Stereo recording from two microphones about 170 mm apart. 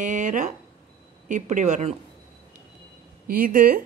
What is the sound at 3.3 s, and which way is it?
Speech, 55° right (ahead or behind).